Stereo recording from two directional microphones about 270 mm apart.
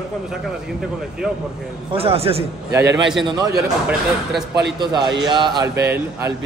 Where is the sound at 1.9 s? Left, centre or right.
Right; by 4.4 s centre.